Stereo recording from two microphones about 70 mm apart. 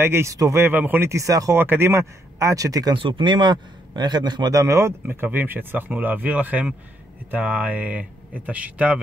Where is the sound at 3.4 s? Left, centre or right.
Right.